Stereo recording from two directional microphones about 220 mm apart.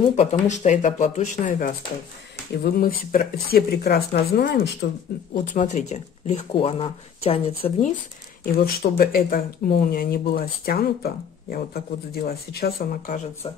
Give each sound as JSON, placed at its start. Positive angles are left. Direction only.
{"t": 0.0, "sound": "speech", "side_deg": 30}
{"t": 8.6, "sound": "speech", "side_deg": 45}